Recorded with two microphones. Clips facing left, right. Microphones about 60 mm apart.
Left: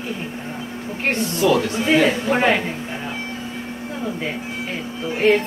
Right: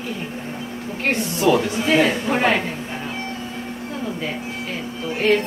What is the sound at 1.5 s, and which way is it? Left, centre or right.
Speech, centre.